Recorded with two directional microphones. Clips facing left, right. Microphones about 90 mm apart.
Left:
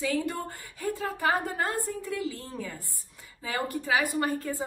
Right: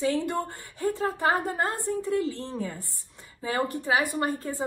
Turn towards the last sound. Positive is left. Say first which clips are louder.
# even
turn(degrees=-25)  # may be behind; listen again after turning